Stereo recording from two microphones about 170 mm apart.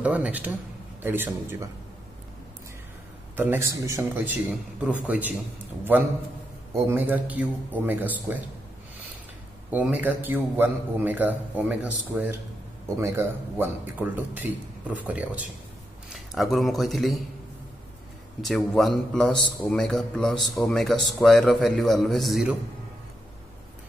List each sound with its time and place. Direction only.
0.0 s a man's voice: 10° right (ahead or behind)
3.3 s a man's voice: 15° right (ahead or behind)
6.7 s a man's voice: 15° right (ahead or behind)
9.7 s a man's voice: 10° right (ahead or behind)
18.4 s a man's voice: centre (ahead or behind)